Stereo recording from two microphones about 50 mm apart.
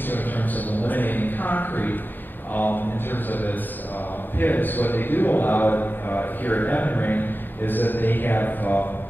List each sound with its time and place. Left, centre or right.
0.7 s a sound: left
2.5 s mantra: left
4.4 s a man's voice: left